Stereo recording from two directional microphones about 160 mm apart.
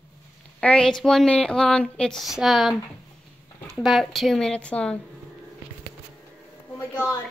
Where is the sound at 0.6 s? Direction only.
5° left (ahead or behind).